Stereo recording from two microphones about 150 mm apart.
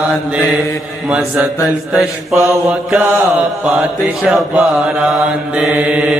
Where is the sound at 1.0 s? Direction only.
10° right (ahead or behind).